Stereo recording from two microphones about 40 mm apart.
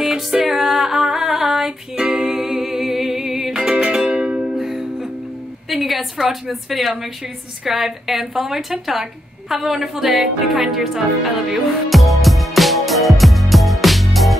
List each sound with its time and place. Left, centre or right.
0.0 s music: centre
2.0 s music: right
2.2 s music: centre
3.9 s music: right
4.5 s music: centre
5.7 s a sound: centre
6.8 s a woman's voice: centre
9.9 s music: centre